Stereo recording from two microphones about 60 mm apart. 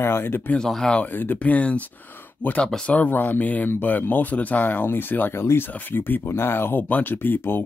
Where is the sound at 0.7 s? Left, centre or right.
Centre.